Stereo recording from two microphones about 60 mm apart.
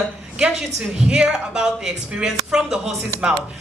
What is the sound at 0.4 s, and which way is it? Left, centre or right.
A woman's voice, centre.